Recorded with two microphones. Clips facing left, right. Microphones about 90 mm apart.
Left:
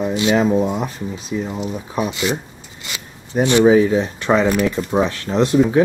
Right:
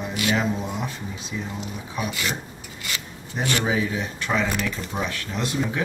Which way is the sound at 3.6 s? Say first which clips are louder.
Left 12 dB; 40° left (ahead or behind).